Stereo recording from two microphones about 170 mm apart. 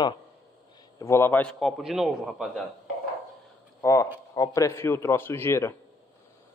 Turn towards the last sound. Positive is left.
turn(degrees=15)  # may be behind; listen again after turning